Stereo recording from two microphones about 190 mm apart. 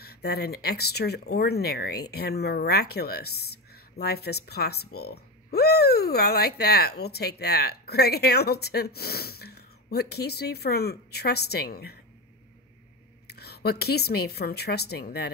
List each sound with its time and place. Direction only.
0.0 s speech: 55° left (ahead or behind)
13.3 s speech: 55° left (ahead or behind)